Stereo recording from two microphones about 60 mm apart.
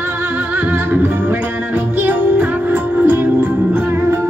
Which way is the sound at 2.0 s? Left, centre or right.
Right.